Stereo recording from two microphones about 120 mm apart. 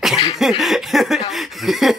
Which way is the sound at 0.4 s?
Centre (ahead or behind).